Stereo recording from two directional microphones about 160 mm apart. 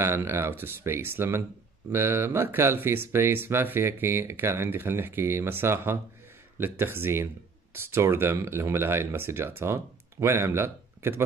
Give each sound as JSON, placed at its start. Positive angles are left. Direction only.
{"t": 0.0, "sound": "speech", "side_deg": -15}